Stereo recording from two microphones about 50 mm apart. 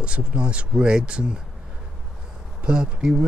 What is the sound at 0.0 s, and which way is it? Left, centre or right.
Speech, right.